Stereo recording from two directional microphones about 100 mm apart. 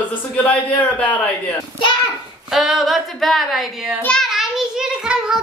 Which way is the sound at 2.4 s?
5° right (ahead or behind).